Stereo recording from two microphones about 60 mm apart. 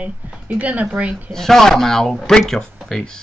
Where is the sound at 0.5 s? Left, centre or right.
Right.